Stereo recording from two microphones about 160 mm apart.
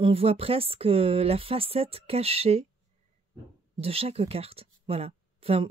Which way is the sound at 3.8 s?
40° right (ahead or behind).